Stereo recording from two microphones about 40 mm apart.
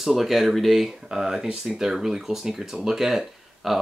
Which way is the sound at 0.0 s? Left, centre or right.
Centre.